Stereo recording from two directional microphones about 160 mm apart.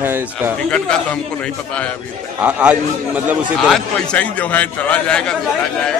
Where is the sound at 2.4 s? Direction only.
10° right (ahead or behind).